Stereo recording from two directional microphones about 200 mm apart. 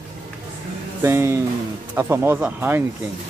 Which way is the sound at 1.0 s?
15° right (ahead or behind).